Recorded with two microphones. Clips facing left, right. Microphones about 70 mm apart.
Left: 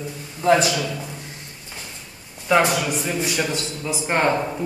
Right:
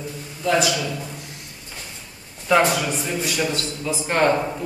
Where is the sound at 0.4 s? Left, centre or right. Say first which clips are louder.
Left 3 dB; left.